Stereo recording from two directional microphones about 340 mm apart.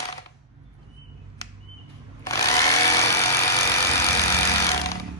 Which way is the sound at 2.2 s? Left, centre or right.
Centre.